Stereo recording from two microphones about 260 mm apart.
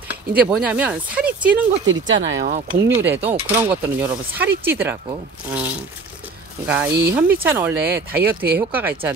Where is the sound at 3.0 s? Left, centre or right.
Centre.